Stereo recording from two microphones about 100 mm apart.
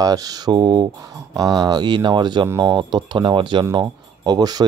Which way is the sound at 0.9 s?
35° right (ahead or behind).